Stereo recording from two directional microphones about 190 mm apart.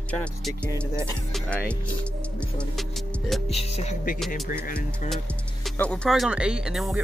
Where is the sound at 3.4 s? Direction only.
35° left (ahead or behind).